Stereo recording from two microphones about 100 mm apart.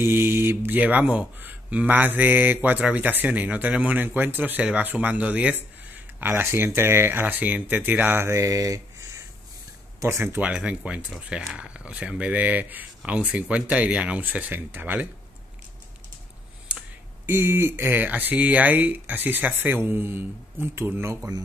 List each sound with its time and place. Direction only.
0.0 s speech: 25° right (ahead or behind)
10.4 s speech: 10° right (ahead or behind)
17.3 s speech: 25° right (ahead or behind)